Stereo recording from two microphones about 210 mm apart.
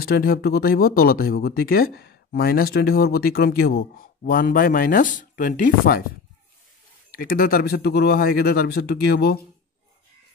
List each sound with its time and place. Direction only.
0.0 s speech: 45° left (ahead or behind)
7.1 s speech: 45° left (ahead or behind)